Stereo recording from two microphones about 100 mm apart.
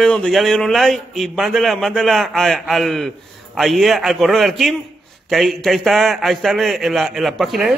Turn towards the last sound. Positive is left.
turn(degrees=0)  # may be behind; listen again after turning